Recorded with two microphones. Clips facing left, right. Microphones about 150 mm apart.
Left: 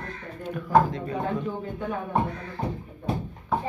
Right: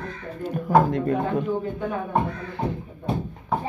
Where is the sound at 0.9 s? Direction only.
60° right (ahead or behind).